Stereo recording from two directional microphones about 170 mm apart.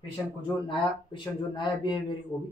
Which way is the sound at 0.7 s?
30° left (ahead or behind).